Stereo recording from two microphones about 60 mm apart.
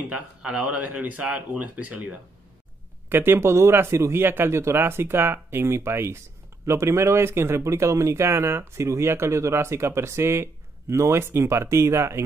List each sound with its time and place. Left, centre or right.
0.1 s speech: centre
3.1 s speech: right